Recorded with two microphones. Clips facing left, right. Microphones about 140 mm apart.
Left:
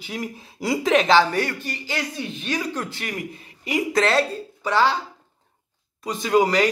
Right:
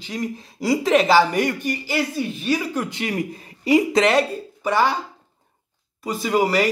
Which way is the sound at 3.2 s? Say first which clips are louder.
Right 6 dB; 35° right (ahead or behind).